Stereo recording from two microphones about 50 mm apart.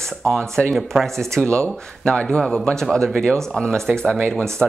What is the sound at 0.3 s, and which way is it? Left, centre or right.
Speech, centre.